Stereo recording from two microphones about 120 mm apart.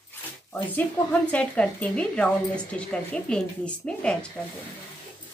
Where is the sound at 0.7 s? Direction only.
10° left (ahead or behind).